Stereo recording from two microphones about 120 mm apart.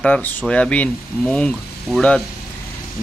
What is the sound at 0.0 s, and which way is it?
Speech, 10° left (ahead or behind).